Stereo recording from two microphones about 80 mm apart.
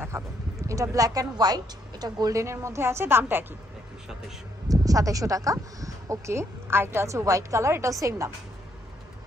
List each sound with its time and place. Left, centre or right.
0.1 s a sound: right
0.6 s a woman's voice: right
2.3 s speech: right
4.6 s speech: right